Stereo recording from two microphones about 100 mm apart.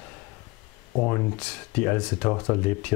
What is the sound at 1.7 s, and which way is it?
Speech, 15° left (ahead or behind).